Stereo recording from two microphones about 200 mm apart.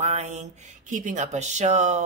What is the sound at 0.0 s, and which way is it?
Speech, 35° right (ahead or behind).